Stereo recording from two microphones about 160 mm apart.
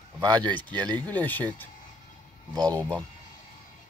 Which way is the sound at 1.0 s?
10° left (ahead or behind).